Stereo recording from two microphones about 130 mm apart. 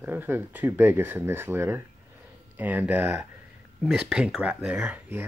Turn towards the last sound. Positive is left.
turn(degrees=-10)  # may be behind; listen again after turning